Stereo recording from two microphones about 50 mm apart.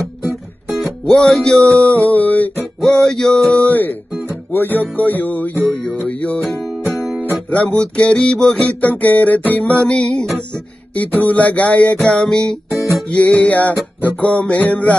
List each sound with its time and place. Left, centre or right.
1.0 s music: centre; by 2.5 s left
2.8 s music: centre
3.5 s music: left
7.4 s music: left
8.6 s music: left
11.0 s music: left; by 12.5 s centre
13.1 s music: left